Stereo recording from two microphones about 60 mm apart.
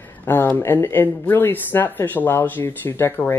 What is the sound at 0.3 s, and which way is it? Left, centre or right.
Speech, left.